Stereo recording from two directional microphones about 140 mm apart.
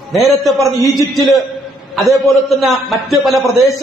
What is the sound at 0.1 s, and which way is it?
Speech, centre (ahead or behind).